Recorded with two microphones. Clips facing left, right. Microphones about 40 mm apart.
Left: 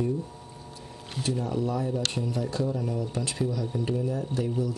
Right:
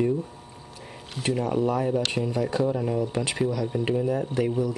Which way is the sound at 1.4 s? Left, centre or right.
Right.